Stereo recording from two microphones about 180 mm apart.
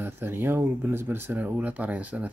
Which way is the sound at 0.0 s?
10° right (ahead or behind).